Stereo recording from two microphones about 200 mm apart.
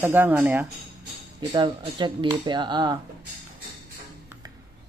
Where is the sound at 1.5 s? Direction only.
25° right (ahead or behind).